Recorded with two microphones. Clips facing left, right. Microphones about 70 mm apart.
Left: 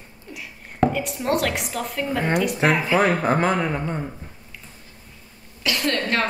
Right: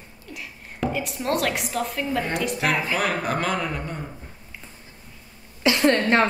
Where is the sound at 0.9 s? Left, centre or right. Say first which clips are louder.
Left 2 dB; centre.